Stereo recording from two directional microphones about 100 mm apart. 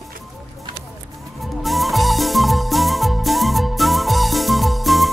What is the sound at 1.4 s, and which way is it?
Music, centre (ahead or behind).